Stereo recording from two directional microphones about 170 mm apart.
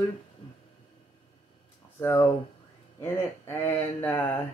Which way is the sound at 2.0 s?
15° left (ahead or behind).